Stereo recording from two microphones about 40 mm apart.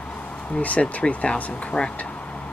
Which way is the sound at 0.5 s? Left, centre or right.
Left.